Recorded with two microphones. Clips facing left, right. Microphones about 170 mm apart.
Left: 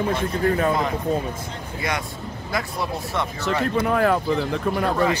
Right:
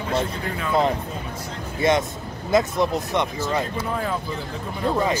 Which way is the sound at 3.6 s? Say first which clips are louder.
Left 6 dB; 70° left (ahead or behind).